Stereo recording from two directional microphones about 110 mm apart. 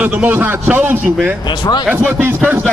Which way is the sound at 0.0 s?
15° right (ahead or behind).